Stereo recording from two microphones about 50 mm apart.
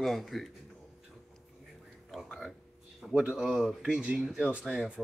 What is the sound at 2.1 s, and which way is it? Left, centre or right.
Speech, centre.